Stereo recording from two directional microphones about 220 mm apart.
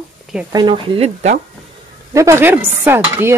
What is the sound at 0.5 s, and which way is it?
Speech, 25° right (ahead or behind).